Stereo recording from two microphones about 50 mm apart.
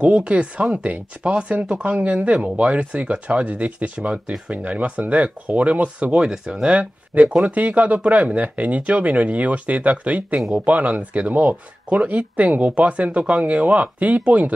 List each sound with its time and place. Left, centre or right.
0.0 s speech: right
6.1 s speech: centre
6.7 s speech: right